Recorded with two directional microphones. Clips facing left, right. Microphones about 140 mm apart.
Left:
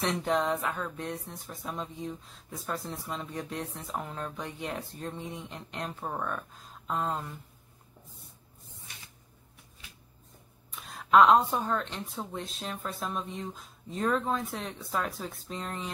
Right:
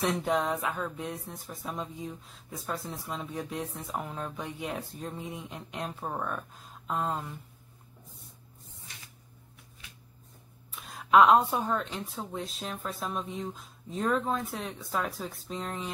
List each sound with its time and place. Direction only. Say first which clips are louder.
0.0 s speech: even; centre (ahead or behind)
10.7 s speech: even; centre (ahead or behind)